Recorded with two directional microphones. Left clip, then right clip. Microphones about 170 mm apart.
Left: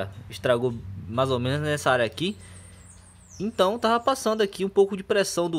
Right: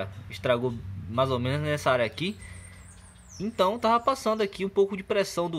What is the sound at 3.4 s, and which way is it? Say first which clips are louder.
Speech: left 2 dB; 15° left (ahead or behind).